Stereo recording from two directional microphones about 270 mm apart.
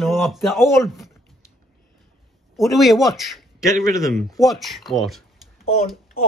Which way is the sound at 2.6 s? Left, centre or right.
Centre.